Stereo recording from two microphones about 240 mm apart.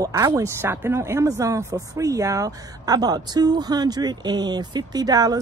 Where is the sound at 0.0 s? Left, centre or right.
Centre.